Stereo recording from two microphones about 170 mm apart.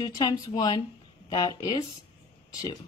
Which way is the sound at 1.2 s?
20° left (ahead or behind).